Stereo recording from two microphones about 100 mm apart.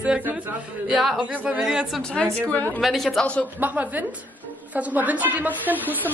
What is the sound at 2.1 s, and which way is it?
Speech, 10° left (ahead or behind).